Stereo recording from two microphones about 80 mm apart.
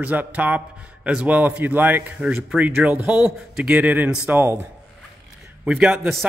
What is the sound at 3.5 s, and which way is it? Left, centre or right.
Speech, centre.